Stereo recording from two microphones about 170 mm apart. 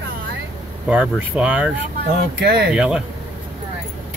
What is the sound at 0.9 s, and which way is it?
Speech, 5° right (ahead or behind).